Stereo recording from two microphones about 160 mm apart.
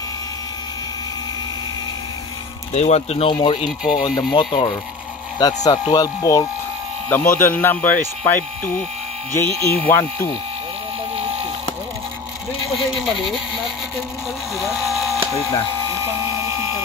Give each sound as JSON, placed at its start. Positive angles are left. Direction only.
{"t": 2.7, "sound": "speech", "side_deg": 45}
{"t": 12.7, "sound": "speech", "side_deg": 0}
{"t": 14.6, "sound": "speech", "side_deg": 0}